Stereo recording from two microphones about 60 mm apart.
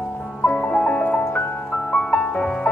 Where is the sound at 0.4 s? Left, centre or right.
Centre.